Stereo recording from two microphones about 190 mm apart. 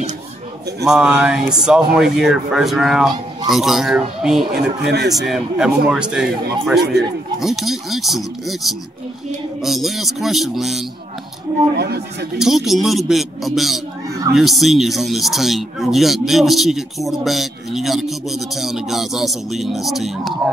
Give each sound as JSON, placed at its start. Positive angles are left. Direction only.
{"t": 0.8, "sound": "speech", "side_deg": -5}
{"t": 4.8, "sound": "speech", "side_deg": -60}
{"t": 5.2, "sound": "speech", "side_deg": 0}
{"t": 6.8, "sound": "speech", "side_deg": -60}
{"t": 7.3, "sound": "speech", "side_deg": 0}
{"t": 11.8, "sound": "speech", "side_deg": -60}
{"t": 12.4, "sound": "speech", "side_deg": 0}